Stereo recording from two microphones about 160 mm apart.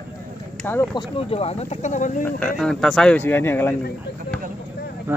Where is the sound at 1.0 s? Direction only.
35° left (ahead or behind).